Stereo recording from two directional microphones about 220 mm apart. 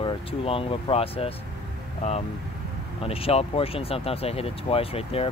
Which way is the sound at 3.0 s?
25° left (ahead or behind).